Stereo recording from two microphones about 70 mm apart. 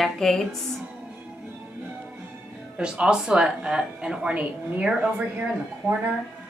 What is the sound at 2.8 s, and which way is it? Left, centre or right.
Speech, centre.